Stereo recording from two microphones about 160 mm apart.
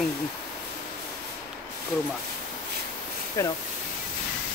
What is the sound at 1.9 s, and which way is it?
Speech, centre (ahead or behind).